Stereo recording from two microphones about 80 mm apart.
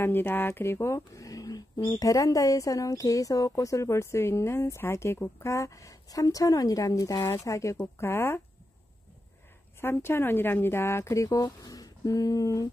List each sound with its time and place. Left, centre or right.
0.0 s a woman's voice: left
8.0 s speech: left
9.8 s speech: left